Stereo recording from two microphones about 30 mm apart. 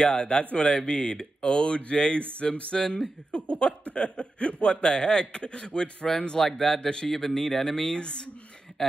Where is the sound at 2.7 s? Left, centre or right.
Left.